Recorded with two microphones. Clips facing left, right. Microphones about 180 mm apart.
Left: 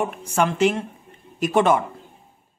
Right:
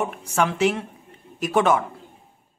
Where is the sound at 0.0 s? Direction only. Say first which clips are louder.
Left 1 dB; centre (ahead or behind).